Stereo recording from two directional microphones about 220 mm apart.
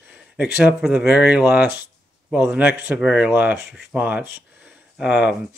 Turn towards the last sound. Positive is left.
turn(degrees=0)  # may be behind; listen again after turning